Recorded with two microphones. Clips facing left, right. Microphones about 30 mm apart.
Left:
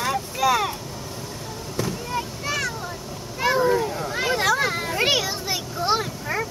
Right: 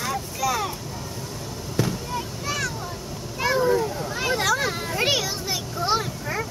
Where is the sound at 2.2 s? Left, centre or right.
Centre.